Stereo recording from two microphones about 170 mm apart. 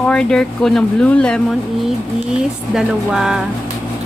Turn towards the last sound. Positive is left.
turn(degrees=-5)  # may be behind; listen again after turning